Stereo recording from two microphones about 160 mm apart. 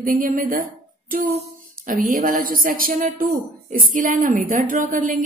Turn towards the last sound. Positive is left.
turn(degrees=-55)  # may be behind; listen again after turning